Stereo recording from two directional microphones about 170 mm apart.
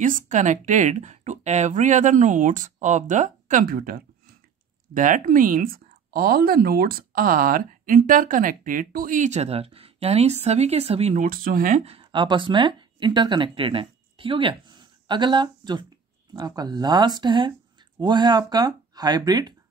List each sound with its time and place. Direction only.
0.0 s speech: 50° right (ahead or behind)
11.2 s speech: 55° right (ahead or behind); by 19.5 s 25° right (ahead or behind)